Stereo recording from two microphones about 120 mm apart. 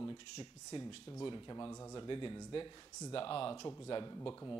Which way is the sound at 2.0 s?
40° left (ahead or behind).